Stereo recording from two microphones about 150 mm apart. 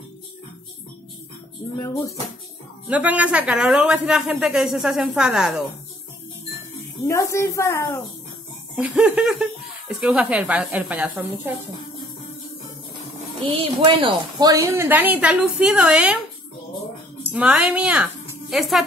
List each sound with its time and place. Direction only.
1.8 s a woman's voice: 20° left (ahead or behind)
2.9 s speech: 10° right (ahead or behind)
7.1 s a woman's voice: 20° left (ahead or behind)
8.7 s a woman's voice: 5° right (ahead or behind)
13.4 s a woman's voice: 35° right (ahead or behind)
14.5 s a woman's voice: 20° right (ahead or behind)
17.2 s a woman's voice: 10° right (ahead or behind)